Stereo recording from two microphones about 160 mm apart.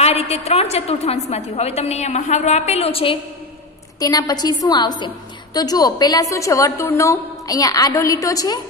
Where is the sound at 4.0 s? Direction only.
25° left (ahead or behind).